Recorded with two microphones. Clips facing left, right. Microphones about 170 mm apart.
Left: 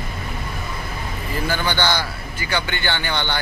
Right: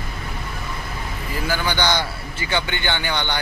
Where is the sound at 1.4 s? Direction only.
10° right (ahead or behind).